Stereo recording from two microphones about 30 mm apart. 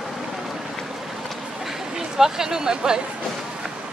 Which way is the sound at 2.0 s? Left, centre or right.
Centre.